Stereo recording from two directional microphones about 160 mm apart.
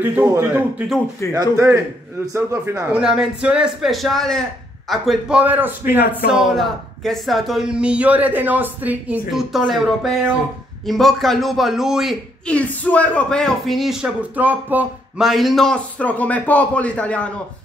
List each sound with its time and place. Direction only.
0.0 s a man's voice: 15° right (ahead or behind)
1.3 s a man's voice: 20° right (ahead or behind)
3.0 s a man's voice: 5° right (ahead or behind)
6.4 s a man's voice: centre (ahead or behind)
12.5 s a man's voice: 10° left (ahead or behind); by 15.2 s 10° right (ahead or behind)
15.2 s a man's voice: centre (ahead or behind)